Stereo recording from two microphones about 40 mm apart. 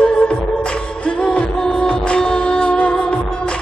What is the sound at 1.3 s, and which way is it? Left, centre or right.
Music, left.